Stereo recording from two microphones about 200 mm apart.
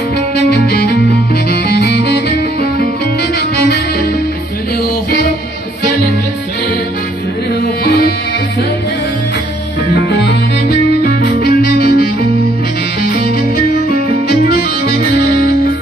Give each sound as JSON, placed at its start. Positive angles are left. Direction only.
{"t": 0.6, "sound": "music", "side_deg": 55}
{"t": 3.3, "sound": "music", "side_deg": 50}
{"t": 7.8, "sound": "music", "side_deg": 55}
{"t": 9.9, "sound": "music", "side_deg": 55}